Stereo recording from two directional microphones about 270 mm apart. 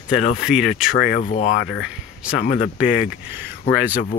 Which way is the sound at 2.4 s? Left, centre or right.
Left.